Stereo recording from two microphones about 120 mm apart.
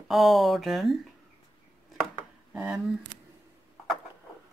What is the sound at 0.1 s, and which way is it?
Speech, centre (ahead or behind).